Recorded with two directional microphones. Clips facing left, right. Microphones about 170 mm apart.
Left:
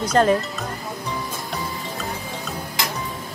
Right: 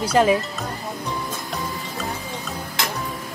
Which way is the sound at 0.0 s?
10° right (ahead or behind).